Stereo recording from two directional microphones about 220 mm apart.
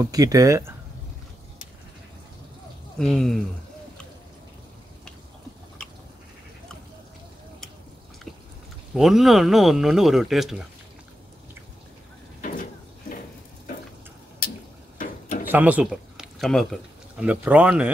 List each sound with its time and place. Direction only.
0.0 s speech: 15° right (ahead or behind)
3.0 s speech: centre (ahead or behind)
5.8 s goat: 5° left (ahead or behind)
8.9 s speech: centre (ahead or behind)
12.4 s a sound: 35° left (ahead or behind)
15.0 s a sound: 35° left (ahead or behind)
15.4 s speech: 5° right (ahead or behind)